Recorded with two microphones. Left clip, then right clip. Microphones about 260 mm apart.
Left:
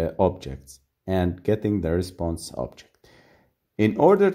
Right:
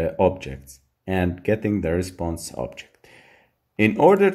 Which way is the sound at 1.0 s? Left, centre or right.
Left.